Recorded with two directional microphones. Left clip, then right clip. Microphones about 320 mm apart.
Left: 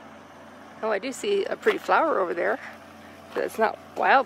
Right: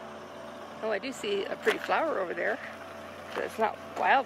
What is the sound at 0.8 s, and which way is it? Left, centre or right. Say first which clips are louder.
Speech: left 6 dB; centre.